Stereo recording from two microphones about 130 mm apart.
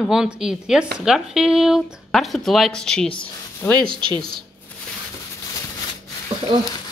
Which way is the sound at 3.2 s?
10° left (ahead or behind).